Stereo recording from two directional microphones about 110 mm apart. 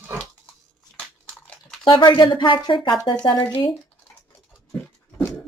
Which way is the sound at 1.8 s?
45° left (ahead or behind).